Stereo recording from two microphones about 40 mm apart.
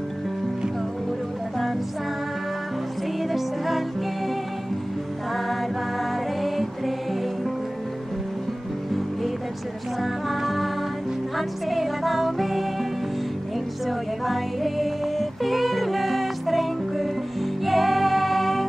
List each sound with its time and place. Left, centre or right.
3.3 s music: centre
6.4 s music: centre
10.2 s music: centre
13.8 s music: centre